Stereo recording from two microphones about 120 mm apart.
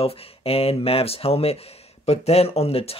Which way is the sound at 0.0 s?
55° left (ahead or behind).